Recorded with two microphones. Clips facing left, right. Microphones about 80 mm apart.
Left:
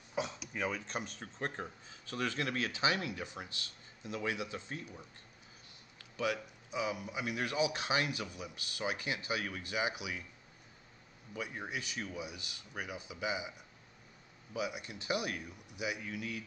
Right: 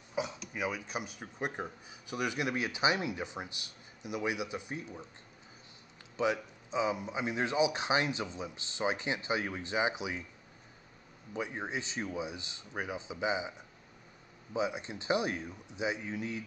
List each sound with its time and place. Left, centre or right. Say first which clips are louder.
0.1 s speech: right 2 dB; centre; by 5.0 s right
6.1 s speech: right 4 dB; right
11.3 s speech: right 4 dB; right